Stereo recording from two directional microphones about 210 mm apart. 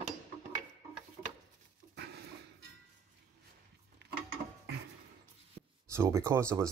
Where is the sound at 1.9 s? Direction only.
55° right (ahead or behind).